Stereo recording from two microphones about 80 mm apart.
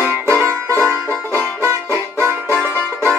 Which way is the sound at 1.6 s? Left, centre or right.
Right.